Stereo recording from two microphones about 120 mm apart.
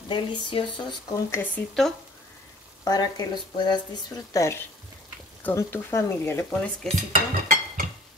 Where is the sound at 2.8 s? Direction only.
30° left (ahead or behind).